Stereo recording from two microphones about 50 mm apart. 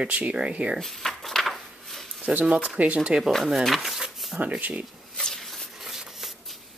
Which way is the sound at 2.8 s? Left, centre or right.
Right.